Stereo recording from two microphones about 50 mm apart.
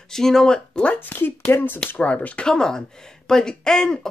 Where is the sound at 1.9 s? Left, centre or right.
Left.